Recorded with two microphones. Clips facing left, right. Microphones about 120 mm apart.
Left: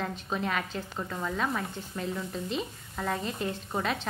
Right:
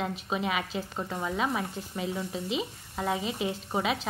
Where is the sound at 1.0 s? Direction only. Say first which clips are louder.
Even; 25° right (ahead or behind).